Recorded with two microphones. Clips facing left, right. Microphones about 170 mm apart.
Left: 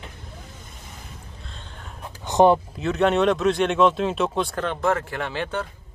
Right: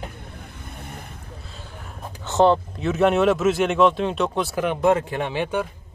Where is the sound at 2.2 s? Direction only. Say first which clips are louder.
Left 1 dB; 15° left (ahead or behind).